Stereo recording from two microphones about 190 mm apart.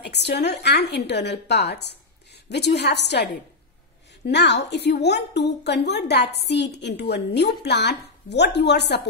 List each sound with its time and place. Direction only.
0.0 s a woman's voice: 60° left (ahead or behind)
4.3 s a woman's voice: 65° left (ahead or behind)